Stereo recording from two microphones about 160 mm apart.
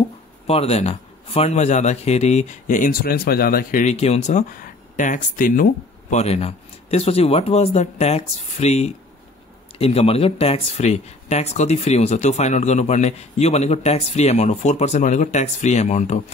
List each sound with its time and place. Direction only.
0.5 s speech: 40° left (ahead or behind); by 3.8 s 65° left (ahead or behind)
3.8 s speech: 40° left (ahead or behind)